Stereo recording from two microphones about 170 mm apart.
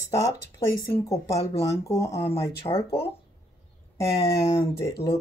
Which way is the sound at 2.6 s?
35° left (ahead or behind).